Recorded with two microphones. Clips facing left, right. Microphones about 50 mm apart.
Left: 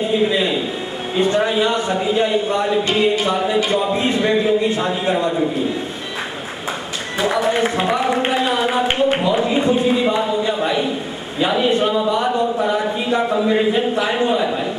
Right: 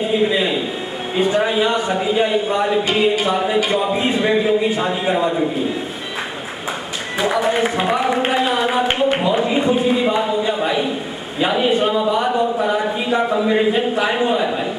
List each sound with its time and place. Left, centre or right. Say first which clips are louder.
0.2 s a man's voice: even; centre
7.2 s a man's voice: even; centre